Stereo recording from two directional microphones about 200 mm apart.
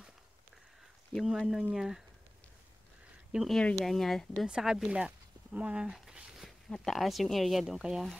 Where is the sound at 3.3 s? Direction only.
Centre (ahead or behind).